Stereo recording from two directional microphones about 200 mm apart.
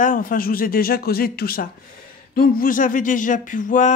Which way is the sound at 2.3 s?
45° left (ahead or behind).